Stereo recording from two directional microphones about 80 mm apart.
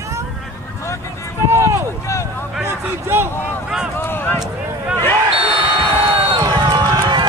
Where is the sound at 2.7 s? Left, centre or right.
Right.